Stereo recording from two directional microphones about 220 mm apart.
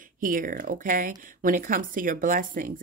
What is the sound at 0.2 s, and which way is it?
Speech, 40° right (ahead or behind).